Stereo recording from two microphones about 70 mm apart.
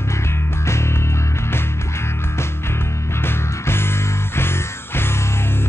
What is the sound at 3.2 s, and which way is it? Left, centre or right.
Music, left.